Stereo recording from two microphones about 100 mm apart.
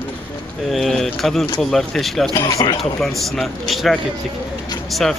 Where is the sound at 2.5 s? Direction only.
35° left (ahead or behind).